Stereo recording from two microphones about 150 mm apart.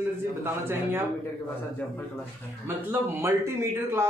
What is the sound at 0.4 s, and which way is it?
Speech, 15° right (ahead or behind).